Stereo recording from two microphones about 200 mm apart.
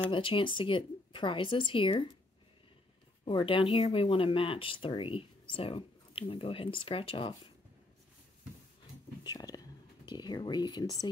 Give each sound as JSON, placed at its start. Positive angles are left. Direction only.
{"t": 0.1, "sound": "speech", "side_deg": 25}
{"t": 3.3, "sound": "speech", "side_deg": 25}
{"t": 9.2, "sound": "whispering", "side_deg": 20}